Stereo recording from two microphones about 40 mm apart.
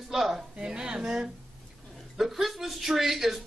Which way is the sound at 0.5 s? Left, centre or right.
Right.